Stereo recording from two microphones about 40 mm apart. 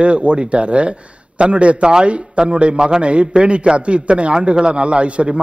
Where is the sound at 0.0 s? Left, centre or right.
Right.